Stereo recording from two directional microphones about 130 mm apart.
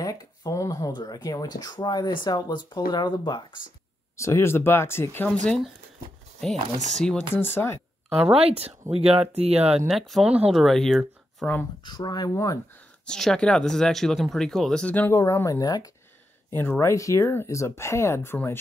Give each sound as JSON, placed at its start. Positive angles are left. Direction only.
{"t": 0.0, "sound": "speech", "side_deg": 25}
{"t": 4.2, "sound": "speech", "side_deg": 20}
{"t": 8.3, "sound": "speech", "side_deg": -50}
{"t": 9.8, "sound": "speech", "side_deg": 0}
{"t": 10.6, "sound": "speech", "side_deg": 0}
{"t": 11.8, "sound": "speech", "side_deg": 35}
{"t": 13.0, "sound": "speech", "side_deg": 5}
{"t": 15.1, "sound": "speech", "side_deg": 25}
{"t": 16.5, "sound": "speech", "side_deg": 15}